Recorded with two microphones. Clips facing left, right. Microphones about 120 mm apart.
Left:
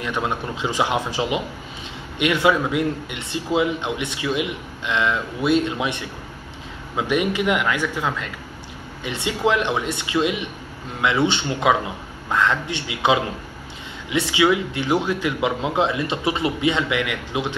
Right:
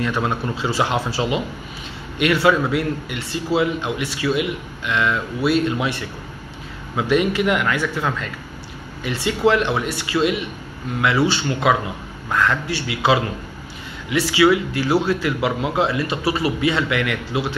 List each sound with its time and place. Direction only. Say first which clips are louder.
0.0 s speech: right 3 dB; 15° left (ahead or behind)